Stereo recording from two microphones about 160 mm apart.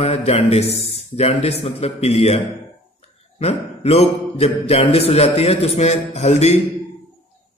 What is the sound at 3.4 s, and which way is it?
A man's voice, 40° left (ahead or behind).